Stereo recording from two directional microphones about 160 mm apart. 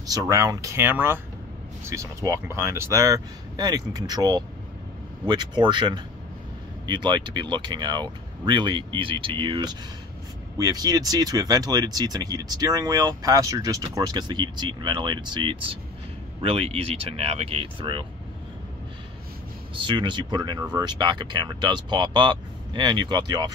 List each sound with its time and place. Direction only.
0.0 s speech: 20° right (ahead or behind)
19.7 s speech: 30° right (ahead or behind)